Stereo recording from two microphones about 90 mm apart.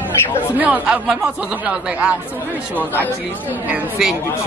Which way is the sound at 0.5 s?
15° right (ahead or behind).